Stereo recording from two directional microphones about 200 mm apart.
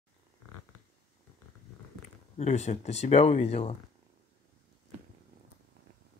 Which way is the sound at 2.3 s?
35° left (ahead or behind).